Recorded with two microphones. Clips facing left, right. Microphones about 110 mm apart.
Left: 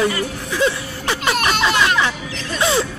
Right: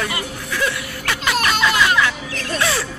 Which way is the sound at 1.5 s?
30° left (ahead or behind).